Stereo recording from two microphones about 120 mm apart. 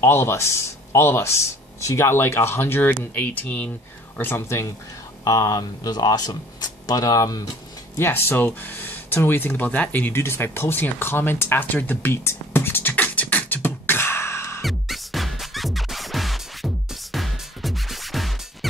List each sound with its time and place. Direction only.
0.0 s speech: 20° left (ahead or behind)
8.0 s speech: 20° left (ahead or behind)
14.6 s music: centre (ahead or behind)